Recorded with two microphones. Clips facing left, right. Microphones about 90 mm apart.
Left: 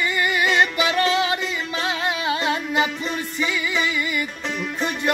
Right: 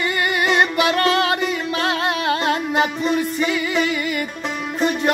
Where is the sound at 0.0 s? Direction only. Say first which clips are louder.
Right 1 dB; 55° right (ahead or behind).